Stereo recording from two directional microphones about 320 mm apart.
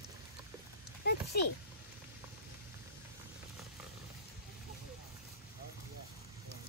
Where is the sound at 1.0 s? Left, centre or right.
Left.